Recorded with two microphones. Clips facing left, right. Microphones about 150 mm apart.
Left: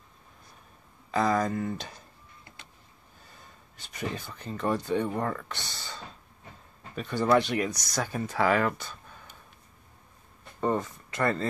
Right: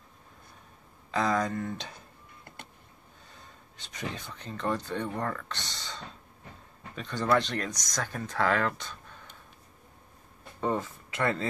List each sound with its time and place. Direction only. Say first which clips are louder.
1.1 s speech: left 2 dB; 5° left (ahead or behind)
2.4 s a sound: right 6 dB; 55° right (ahead or behind)
3.7 s speech: left 3 dB; 5° left (ahead or behind)
10.6 s speech: left 2 dB; centre (ahead or behind)